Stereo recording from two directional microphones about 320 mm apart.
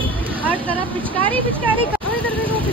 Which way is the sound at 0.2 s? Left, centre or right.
Centre.